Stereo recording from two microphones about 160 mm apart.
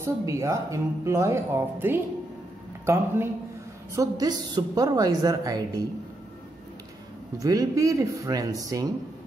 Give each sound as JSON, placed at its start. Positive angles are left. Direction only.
{"t": 0.0, "sound": "a woman's voice", "side_deg": -20}
{"t": 7.3, "sound": "a woman's voice", "side_deg": -20}